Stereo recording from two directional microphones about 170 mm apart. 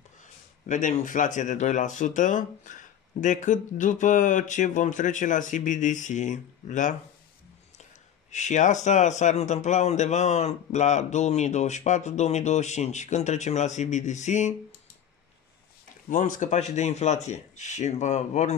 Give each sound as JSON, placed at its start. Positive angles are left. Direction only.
{"t": 0.2, "sound": "speech", "side_deg": 50}
{"t": 8.3, "sound": "speech", "side_deg": 45}
{"t": 16.1, "sound": "speech", "side_deg": 50}